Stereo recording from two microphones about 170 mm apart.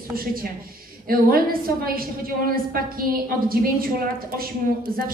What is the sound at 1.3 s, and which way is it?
A woman's voice, 60° right (ahead or behind).